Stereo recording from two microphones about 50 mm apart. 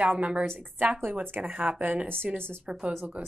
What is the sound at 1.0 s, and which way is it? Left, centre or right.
Speech, right.